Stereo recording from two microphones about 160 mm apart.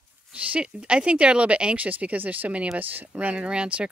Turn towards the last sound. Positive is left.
turn(degrees=-5)  # may be behind; listen again after turning